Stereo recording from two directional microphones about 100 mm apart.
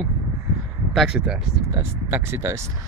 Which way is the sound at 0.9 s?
5° right (ahead or behind).